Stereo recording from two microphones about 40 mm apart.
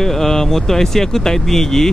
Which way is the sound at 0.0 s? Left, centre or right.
Centre.